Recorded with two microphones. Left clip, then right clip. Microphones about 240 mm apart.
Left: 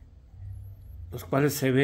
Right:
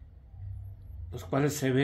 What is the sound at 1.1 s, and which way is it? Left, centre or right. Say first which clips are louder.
Speech: left 4 dB; left.